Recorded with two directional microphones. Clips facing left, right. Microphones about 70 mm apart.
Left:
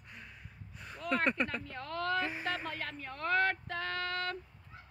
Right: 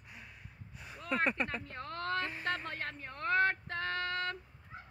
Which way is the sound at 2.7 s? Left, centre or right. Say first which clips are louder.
Left 1 dB; right.